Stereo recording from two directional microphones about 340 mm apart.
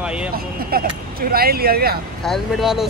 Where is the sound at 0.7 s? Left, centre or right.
Right.